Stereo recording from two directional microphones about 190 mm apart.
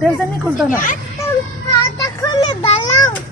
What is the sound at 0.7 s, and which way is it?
Speech, 45° left (ahead or behind).